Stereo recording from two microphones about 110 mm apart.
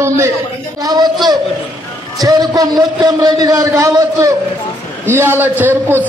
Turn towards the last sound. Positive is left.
turn(degrees=-20)  # may be behind; listen again after turning